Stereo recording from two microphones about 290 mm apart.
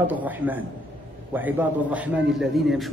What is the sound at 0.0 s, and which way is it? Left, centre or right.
A man's voice, centre.